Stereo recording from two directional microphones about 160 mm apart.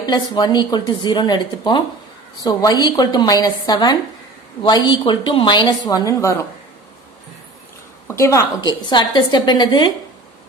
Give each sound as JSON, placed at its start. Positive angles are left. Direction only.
{"t": 0.0, "sound": "speech", "side_deg": 25}
{"t": 8.1, "sound": "speech", "side_deg": 20}